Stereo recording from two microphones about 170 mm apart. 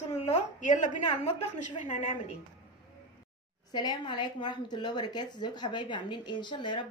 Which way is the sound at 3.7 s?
25° left (ahead or behind).